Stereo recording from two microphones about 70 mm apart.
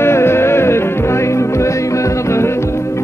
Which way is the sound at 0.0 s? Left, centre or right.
Left.